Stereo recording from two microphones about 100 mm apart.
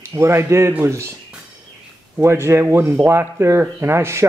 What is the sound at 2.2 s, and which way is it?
Speech, 25° right (ahead or behind).